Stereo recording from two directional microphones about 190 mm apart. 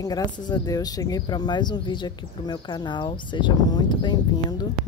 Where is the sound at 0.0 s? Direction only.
20° left (ahead or behind).